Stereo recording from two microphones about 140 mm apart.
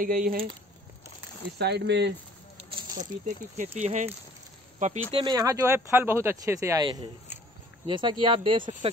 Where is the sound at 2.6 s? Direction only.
40° right (ahead or behind).